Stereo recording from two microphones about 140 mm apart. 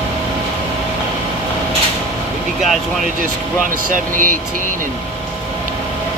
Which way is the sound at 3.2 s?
75° right (ahead or behind).